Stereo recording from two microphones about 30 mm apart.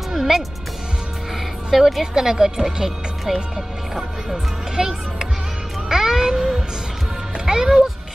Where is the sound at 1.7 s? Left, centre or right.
Centre.